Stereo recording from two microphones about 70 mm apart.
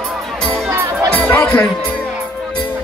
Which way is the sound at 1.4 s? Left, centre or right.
Left.